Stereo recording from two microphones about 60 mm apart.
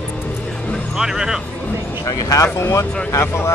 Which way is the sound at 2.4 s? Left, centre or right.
Left.